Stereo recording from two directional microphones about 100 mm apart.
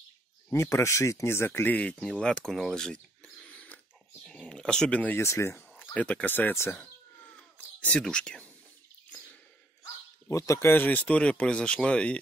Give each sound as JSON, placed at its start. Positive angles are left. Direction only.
{"t": 0.5, "sound": "speech", "side_deg": 25}
{"t": 3.4, "sound": "a sound", "side_deg": 10}
{"t": 5.2, "sound": "speech", "side_deg": 25}
{"t": 5.9, "sound": "speech", "side_deg": 15}
{"t": 7.5, "sound": "speech", "side_deg": 10}
{"t": 10.3, "sound": "speech", "side_deg": 30}